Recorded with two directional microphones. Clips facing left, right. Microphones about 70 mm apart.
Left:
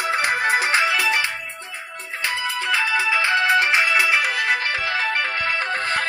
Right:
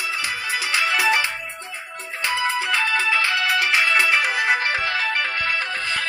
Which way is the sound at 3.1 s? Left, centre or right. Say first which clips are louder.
Left 2 dB; left.